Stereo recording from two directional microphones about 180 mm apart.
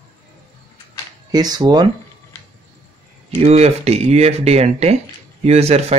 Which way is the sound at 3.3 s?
35° right (ahead or behind).